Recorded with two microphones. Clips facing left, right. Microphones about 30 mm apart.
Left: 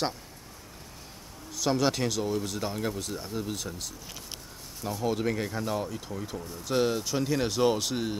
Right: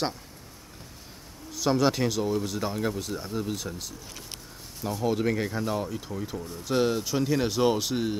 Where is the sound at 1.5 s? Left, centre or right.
Centre.